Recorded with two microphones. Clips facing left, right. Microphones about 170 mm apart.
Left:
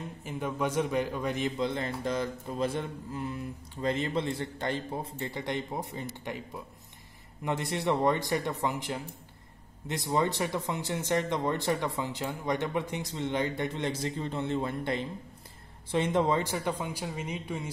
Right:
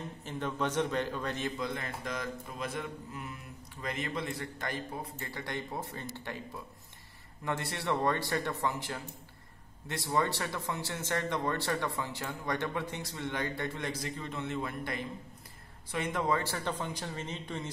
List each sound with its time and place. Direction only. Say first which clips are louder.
0.2 s speech: left 2 dB; 10° left (ahead or behind)
1.6 s speech: left 6 dB; 25° left (ahead or behind)
7.4 s speech: left 4 dB; 15° left (ahead or behind)